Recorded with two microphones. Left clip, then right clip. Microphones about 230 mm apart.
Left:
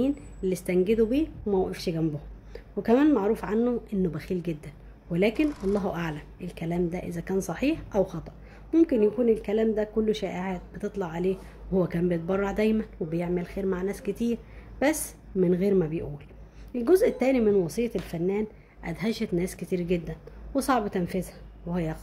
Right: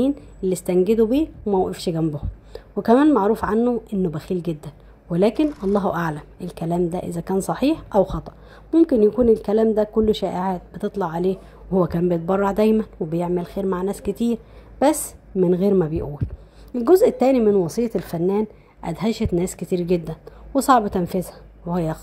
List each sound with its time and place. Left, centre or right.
0.0 s a woman's voice: centre
5.3 s speech: centre
6.4 s a woman's voice: centre